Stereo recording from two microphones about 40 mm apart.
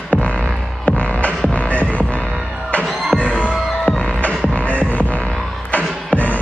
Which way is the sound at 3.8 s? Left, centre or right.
Left.